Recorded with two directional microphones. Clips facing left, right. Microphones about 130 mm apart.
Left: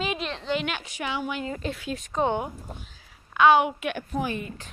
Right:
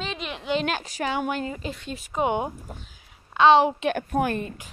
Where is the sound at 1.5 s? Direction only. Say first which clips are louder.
Left 2 dB; centre (ahead or behind).